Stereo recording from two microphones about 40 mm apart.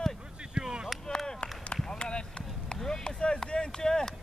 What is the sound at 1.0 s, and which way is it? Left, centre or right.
Run, centre.